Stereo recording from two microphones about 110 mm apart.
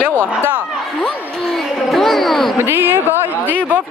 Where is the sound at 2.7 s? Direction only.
20° right (ahead or behind).